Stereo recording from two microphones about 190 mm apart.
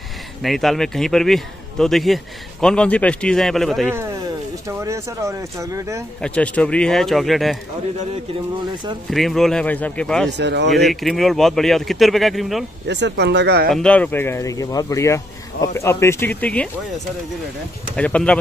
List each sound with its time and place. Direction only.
0.4 s a man's voice: centre (ahead or behind)
3.9 s speech: 15° right (ahead or behind)
6.2 s a man's voice: 5° left (ahead or behind)
9.1 s a man's voice: centre (ahead or behind)
10.3 s speech: 65° right (ahead or behind)
10.7 s a man's voice: centre (ahead or behind)
12.8 s speech: 65° right (ahead or behind)
13.7 s speech: 5° left (ahead or behind)
17.9 s a man's voice: 5° left (ahead or behind)